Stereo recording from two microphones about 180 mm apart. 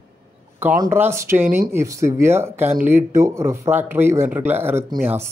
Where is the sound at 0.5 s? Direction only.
10° right (ahead or behind).